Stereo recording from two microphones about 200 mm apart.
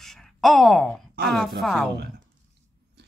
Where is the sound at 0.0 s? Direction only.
Centre (ahead or behind).